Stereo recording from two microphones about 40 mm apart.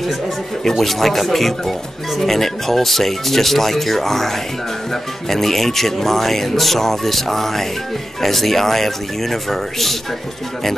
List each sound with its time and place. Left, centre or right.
0.7 s speech: centre